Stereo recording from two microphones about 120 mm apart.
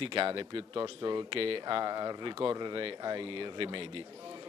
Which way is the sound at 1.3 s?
50° right (ahead or behind).